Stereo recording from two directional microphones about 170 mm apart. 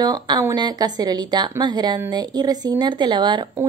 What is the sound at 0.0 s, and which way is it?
A woman's voice, 25° right (ahead or behind).